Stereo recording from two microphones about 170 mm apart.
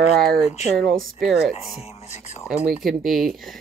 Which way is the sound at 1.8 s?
40° left (ahead or behind).